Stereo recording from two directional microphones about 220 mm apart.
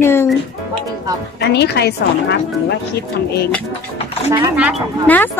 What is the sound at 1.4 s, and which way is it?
Speech, 50° left (ahead or behind).